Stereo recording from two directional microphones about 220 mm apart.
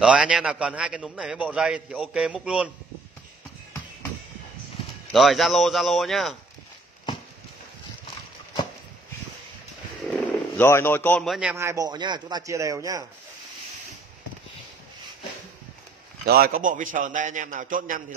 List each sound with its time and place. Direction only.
0.0 s a man's voice: 5° right (ahead or behind)
5.1 s a man's voice: centre (ahead or behind)
10.0 s speech: 5° left (ahead or behind); by 13.0 s 15° right (ahead or behind)
16.3 s a man's voice: 45° right (ahead or behind)